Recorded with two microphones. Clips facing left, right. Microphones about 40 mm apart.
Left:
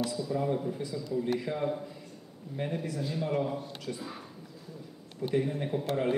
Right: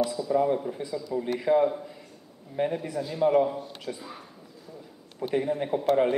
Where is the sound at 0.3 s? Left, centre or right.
Centre.